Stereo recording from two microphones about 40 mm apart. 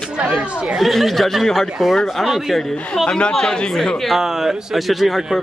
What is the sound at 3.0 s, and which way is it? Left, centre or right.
A man's voice, left.